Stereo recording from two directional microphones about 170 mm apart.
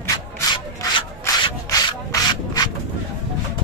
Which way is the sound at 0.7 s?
20° left (ahead or behind).